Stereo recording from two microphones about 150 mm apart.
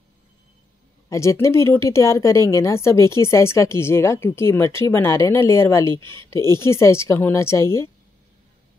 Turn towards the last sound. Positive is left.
turn(degrees=20)  # may be behind; listen again after turning